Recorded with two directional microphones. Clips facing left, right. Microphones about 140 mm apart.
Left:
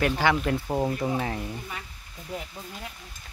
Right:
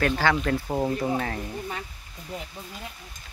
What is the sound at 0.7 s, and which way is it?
Speech, centre (ahead or behind).